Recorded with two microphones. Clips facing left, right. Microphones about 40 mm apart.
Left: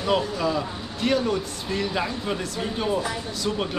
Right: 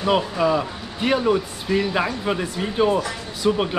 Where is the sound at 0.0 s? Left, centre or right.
Centre.